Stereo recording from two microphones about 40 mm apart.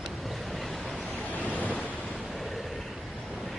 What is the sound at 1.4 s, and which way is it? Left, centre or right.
Waves, left.